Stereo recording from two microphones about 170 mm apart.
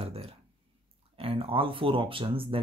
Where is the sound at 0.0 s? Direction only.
35° right (ahead or behind).